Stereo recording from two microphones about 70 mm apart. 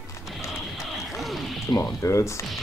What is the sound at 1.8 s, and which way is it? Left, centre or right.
Speech, left.